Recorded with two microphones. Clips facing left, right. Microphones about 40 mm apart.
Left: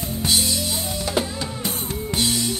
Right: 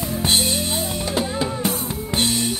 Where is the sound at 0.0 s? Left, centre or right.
Right.